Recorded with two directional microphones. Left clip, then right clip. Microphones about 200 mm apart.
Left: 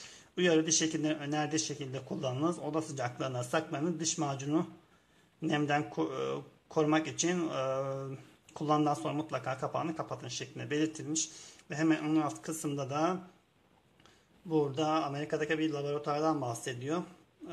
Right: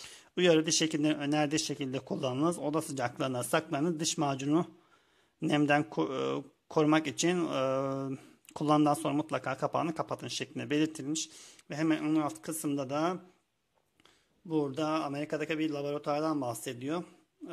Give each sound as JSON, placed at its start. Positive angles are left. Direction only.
{"t": 0.0, "sound": "speech", "side_deg": -50}
{"t": 14.5, "sound": "speech", "side_deg": -40}